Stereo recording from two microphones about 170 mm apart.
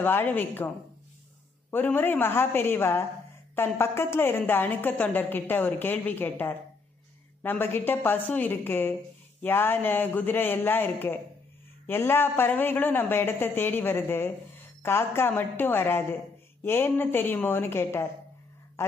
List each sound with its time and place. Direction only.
0.0 s a woman's voice: 10° left (ahead or behind)
1.7 s a woman's voice: 10° left (ahead or behind)